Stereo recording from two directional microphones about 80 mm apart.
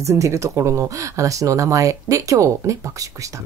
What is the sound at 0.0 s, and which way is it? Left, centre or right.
Speech, right.